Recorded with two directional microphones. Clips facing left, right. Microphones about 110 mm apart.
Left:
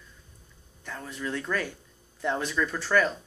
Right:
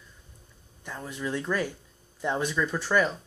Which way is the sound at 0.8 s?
15° right (ahead or behind).